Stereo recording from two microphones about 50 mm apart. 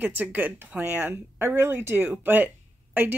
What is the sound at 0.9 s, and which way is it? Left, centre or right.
Speech, right.